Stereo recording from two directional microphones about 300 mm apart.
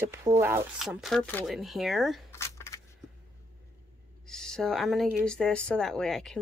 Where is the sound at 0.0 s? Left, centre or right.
Centre.